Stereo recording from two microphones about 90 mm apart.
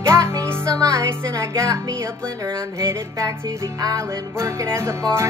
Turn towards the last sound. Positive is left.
turn(degrees=-30)  # may be behind; listen again after turning